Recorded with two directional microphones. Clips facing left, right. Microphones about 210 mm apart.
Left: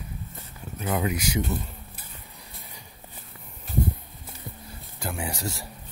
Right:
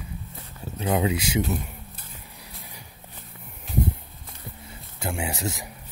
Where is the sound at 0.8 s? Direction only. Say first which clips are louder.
Right 3 dB; 25° right (ahead or behind).